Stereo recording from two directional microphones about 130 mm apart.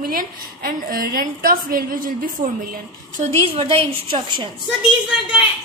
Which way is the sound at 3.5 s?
50° right (ahead or behind).